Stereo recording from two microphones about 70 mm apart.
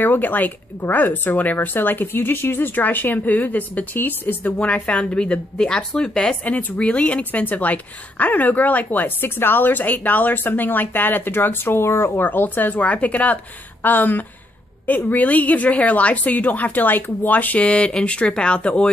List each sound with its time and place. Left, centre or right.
0.0 s a woman's voice: left
4.6 s a woman's voice: centre; by 12.1 s left
12.2 s a woman's voice: left